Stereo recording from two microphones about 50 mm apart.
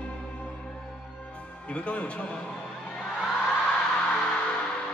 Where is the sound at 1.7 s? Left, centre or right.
Left.